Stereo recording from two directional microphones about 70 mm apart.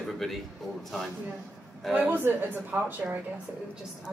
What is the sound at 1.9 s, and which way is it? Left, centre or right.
A woman's voice, right.